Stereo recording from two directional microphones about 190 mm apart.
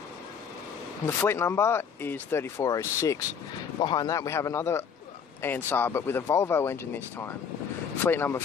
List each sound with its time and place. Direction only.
1.0 s speech: 10° left (ahead or behind)